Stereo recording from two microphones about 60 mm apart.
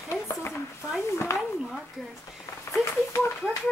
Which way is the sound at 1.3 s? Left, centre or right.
Left.